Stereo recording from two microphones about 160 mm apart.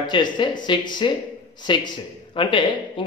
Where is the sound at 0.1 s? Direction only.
30° left (ahead or behind).